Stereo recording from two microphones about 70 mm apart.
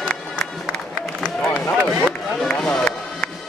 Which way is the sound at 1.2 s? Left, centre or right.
Centre.